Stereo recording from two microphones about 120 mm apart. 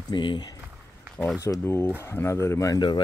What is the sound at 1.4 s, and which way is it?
Speech, 25° left (ahead or behind).